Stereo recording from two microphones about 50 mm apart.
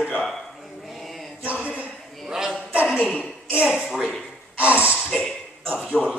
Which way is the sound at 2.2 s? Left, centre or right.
Centre.